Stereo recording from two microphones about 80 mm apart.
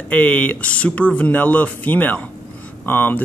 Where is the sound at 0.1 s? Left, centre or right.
Centre.